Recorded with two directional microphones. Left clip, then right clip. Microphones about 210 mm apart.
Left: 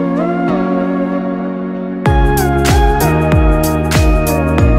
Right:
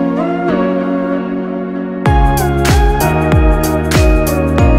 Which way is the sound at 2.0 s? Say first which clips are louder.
Even; centre (ahead or behind).